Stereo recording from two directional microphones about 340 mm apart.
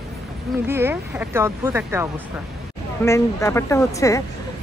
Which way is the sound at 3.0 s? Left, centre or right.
Centre.